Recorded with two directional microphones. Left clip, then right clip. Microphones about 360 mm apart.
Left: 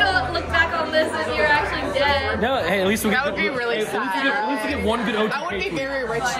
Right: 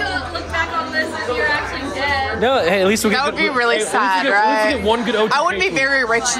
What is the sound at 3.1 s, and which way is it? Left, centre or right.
A woman's voice, centre.